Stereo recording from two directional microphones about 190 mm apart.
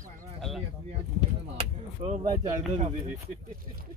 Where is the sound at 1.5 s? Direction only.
35° right (ahead or behind).